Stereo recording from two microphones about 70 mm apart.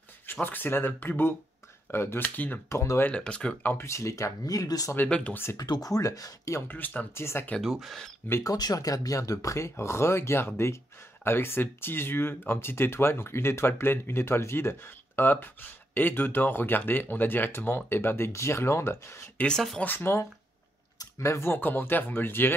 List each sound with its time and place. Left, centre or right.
0.3 s speech: left
2.7 s speech: left
3.1 s speech: centre
3.7 s speech: left
5.3 s speech: left
5.6 s speech: left
6.7 s speech: left
7.2 s speech: left
7.6 s speech: centre
8.5 s speech: left
19.4 s speech: centre
19.8 s speech: left
21.2 s speech: left